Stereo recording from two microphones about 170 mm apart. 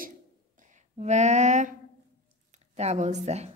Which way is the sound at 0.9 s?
40° right (ahead or behind).